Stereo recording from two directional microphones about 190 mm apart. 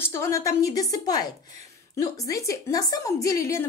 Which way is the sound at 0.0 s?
15° left (ahead or behind).